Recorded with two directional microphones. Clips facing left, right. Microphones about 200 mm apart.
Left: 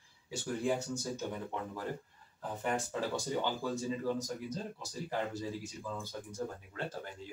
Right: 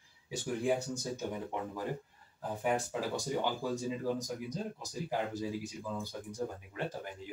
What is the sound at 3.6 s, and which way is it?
Speech, 10° right (ahead or behind).